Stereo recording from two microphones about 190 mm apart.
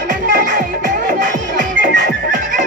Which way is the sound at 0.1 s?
45° right (ahead or behind).